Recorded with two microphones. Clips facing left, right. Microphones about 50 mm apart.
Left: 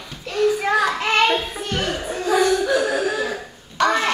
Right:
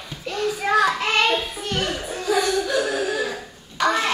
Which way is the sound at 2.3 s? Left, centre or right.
Centre.